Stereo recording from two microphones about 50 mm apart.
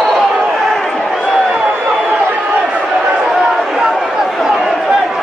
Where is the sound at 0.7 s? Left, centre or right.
Centre.